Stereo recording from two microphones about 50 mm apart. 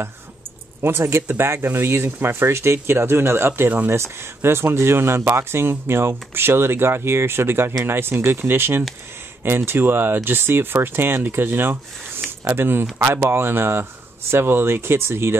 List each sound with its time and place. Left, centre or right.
0.8 s speech: right